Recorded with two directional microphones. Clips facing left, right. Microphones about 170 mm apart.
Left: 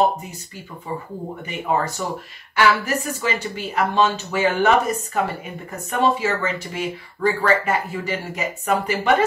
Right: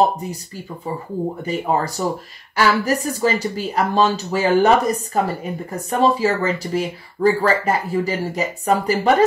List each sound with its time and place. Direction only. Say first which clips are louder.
1.4 s speech: even; 35° right (ahead or behind)